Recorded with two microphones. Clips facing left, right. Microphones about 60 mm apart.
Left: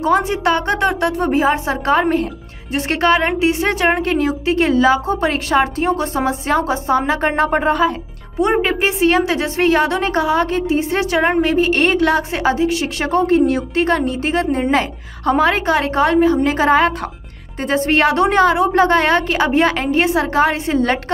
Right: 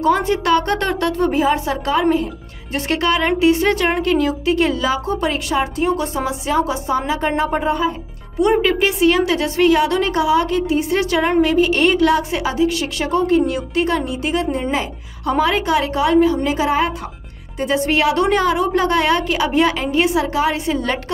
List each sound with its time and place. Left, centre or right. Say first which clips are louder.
0.0 s a woman's voice: left 1 dB; left
2.7 s a woman's voice: left 3 dB; left
8.4 s a woman's voice: right 1 dB; left
14.7 s a woman's voice: left 4 dB; left
15.3 s a woman's voice: left 1 dB; left
17.6 s a woman's voice: left 2 dB; left
18.1 s a woman's voice: left 2 dB; left
18.7 s a woman's voice: left 3 dB; left